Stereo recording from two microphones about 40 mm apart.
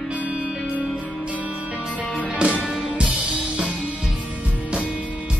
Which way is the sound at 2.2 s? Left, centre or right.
Right.